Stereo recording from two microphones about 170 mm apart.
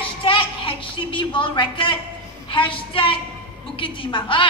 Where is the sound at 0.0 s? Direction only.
30° left (ahead or behind).